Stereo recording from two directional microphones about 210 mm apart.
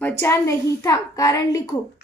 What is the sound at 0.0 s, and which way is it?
A woman's voice, 10° left (ahead or behind).